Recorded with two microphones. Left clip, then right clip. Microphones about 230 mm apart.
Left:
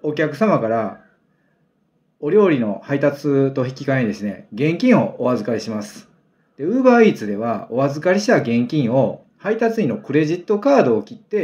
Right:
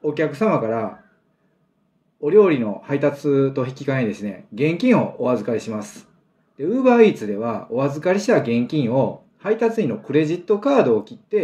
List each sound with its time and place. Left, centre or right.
0.0 s speech: centre
2.2 s speech: centre